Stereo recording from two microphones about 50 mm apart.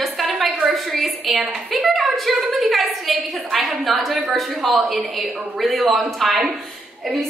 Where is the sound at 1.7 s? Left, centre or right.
Centre.